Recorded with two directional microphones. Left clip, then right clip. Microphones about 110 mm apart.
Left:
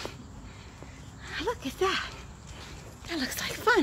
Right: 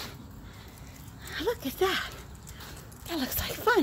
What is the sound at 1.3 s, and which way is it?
Speech, 15° right (ahead or behind).